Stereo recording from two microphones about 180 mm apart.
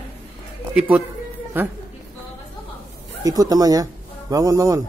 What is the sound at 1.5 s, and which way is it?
Speech, 10° right (ahead or behind).